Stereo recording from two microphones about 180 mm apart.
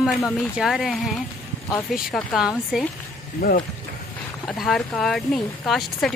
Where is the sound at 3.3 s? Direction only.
55° left (ahead or behind).